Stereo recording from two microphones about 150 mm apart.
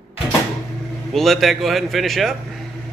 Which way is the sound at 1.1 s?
Centre (ahead or behind).